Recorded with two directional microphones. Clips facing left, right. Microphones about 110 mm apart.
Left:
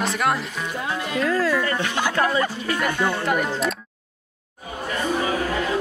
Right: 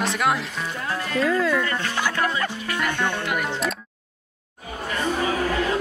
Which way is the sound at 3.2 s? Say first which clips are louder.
Left 4 dB; 40° left (ahead or behind).